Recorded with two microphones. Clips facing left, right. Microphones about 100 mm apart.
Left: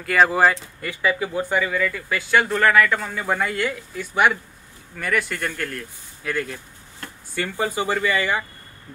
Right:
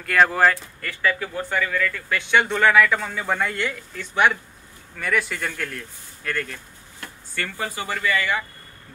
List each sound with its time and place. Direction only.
0.0 s speech: 5° left (ahead or behind)
6.3 s speech: 10° left (ahead or behind)